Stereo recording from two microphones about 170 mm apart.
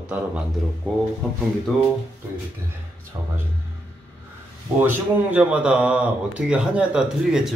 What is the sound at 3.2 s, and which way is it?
Speech, 15° right (ahead or behind).